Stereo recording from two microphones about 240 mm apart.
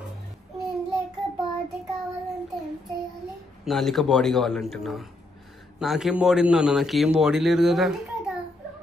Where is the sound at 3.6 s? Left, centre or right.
Centre.